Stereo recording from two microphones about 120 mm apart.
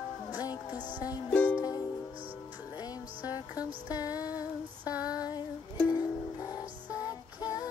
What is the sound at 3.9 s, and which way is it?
Female singing, 30° left (ahead or behind).